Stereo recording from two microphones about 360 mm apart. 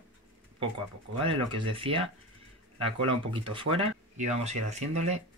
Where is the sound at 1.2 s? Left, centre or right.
Centre.